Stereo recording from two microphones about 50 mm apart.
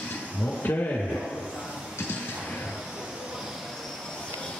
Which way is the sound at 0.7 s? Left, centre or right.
Left.